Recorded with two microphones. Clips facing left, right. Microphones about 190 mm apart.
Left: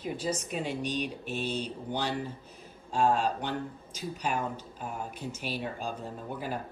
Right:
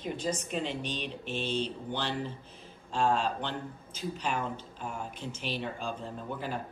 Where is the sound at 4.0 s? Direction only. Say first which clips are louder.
Left 1 dB; 10° left (ahead or behind).